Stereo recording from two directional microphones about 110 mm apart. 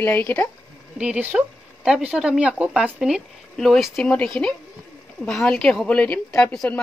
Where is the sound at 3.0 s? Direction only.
Centre (ahead or behind).